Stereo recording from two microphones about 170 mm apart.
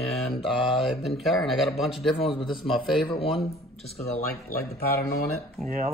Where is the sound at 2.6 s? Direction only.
Centre (ahead or behind).